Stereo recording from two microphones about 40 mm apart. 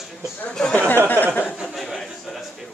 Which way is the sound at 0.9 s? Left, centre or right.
Left.